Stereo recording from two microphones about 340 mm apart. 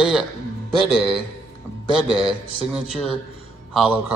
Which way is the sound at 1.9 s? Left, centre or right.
Centre.